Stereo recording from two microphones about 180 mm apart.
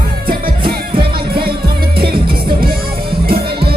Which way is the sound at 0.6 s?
30° right (ahead or behind).